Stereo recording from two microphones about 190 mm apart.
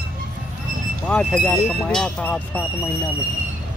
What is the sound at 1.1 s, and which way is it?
Speech, 5° left (ahead or behind).